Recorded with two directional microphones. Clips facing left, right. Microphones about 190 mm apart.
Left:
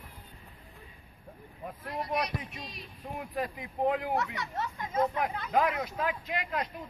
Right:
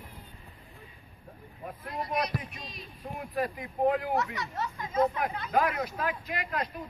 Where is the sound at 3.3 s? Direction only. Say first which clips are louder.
Right 3 dB; 20° left (ahead or behind).